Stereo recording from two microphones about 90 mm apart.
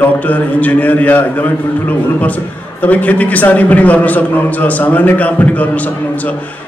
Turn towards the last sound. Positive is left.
turn(degrees=15)  # may be behind; listen again after turning